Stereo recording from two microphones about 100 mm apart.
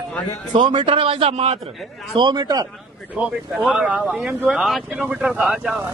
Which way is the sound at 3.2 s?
10° right (ahead or behind).